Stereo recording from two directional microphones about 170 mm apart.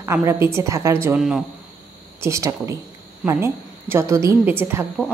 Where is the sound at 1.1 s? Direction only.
5° right (ahead or behind).